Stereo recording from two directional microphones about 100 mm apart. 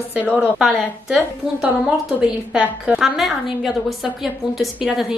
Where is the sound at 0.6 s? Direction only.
Centre (ahead or behind).